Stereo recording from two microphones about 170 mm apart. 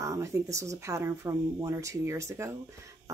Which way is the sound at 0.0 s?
15° right (ahead or behind).